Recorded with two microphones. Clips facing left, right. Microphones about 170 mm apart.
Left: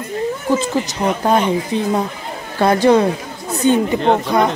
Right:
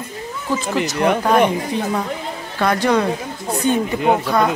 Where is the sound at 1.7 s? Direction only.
30° left (ahead or behind).